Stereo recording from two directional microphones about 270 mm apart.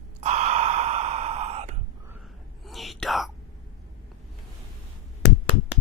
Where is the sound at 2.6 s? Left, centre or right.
Centre.